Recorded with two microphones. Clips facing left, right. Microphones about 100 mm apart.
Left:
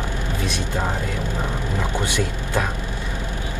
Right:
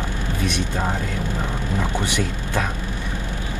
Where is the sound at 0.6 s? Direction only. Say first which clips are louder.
Even; 15° left (ahead or behind).